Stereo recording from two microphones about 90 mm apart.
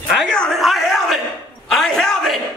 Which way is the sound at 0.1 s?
5° left (ahead or behind).